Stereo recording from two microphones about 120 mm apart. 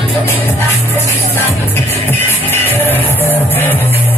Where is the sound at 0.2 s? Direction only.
20° left (ahead or behind).